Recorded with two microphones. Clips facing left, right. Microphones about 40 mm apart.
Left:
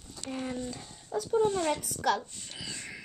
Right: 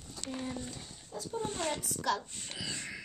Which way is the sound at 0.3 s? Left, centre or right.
Left.